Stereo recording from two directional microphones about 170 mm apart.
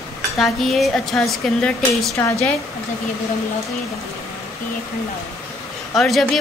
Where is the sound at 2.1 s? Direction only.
15° left (ahead or behind).